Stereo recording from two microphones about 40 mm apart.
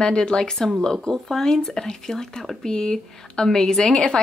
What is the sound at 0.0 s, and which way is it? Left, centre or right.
A woman's voice, left.